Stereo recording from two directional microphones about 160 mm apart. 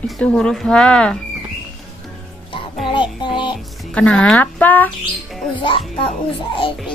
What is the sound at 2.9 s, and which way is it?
Music, 30° left (ahead or behind).